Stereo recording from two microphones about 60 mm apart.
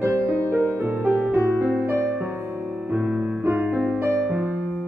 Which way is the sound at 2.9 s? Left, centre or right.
Right.